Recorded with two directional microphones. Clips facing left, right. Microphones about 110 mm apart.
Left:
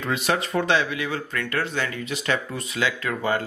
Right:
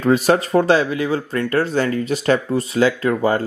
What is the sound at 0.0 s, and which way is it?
Speech, 40° right (ahead or behind).